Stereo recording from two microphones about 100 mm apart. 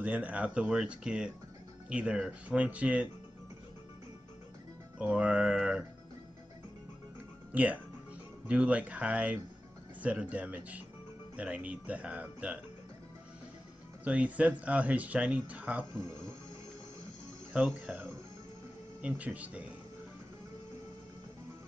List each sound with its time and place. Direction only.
0.0 s speech: 15° right (ahead or behind)
4.9 s speech: 10° right (ahead or behind)
7.5 s speech: 15° right (ahead or behind)
14.0 s speech: 15° right (ahead or behind)
17.5 s speech: 10° right (ahead or behind)